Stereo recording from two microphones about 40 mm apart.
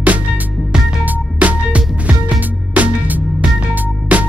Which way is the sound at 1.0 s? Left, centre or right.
Right.